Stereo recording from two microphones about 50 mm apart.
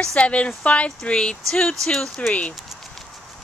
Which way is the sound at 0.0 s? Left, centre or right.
Left.